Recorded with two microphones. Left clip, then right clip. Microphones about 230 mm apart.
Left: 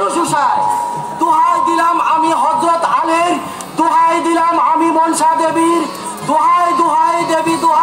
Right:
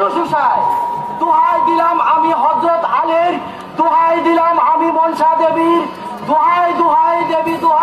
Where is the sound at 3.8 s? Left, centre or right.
Left.